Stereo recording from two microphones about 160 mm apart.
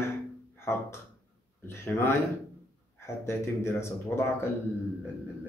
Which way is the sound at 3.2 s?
15° left (ahead or behind).